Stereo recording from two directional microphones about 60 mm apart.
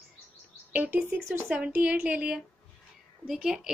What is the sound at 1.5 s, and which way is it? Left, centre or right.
Speech, right.